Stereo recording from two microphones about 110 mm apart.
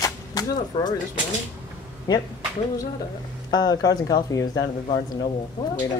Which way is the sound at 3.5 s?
35° left (ahead or behind).